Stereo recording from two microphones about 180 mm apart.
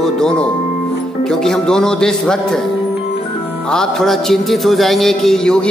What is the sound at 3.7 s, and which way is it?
Music, 5° left (ahead or behind).